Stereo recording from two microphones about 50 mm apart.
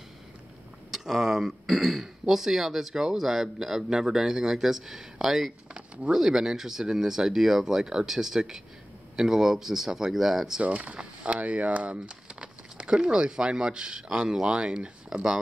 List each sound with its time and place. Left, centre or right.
0.9 s speech: centre
10.6 s speech: right